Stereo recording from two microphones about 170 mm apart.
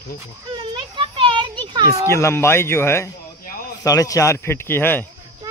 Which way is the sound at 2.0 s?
15° left (ahead or behind).